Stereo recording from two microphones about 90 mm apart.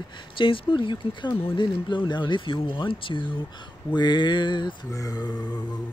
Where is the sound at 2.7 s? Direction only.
65° left (ahead or behind).